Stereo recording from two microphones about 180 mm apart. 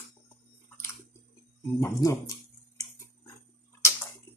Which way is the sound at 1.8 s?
20° left (ahead or behind).